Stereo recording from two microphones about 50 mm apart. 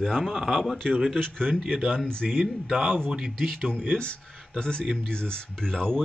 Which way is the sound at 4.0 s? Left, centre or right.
Centre.